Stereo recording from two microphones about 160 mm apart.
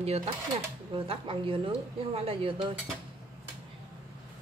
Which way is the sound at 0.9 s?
35° right (ahead or behind).